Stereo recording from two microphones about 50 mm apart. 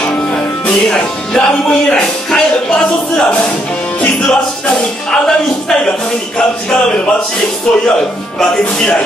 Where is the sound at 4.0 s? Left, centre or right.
Centre.